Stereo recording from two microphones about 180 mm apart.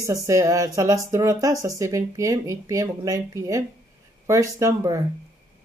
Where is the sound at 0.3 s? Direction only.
20° right (ahead or behind).